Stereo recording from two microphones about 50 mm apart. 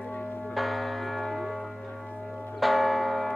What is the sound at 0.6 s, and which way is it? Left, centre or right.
Church bell, centre.